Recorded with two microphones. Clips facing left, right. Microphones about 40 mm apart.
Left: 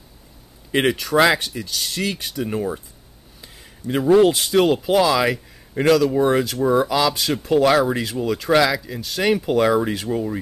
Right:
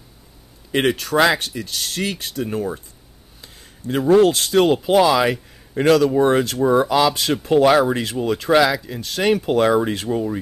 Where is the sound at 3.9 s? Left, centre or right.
Centre.